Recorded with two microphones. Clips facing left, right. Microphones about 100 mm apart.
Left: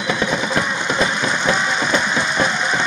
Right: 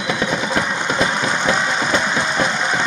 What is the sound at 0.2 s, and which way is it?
Engine, 40° right (ahead or behind).